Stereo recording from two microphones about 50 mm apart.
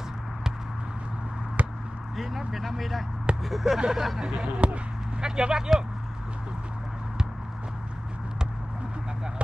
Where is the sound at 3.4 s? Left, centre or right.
Centre.